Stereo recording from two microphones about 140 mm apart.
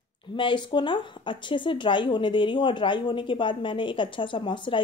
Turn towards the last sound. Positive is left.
turn(degrees=35)  # may be behind; listen again after turning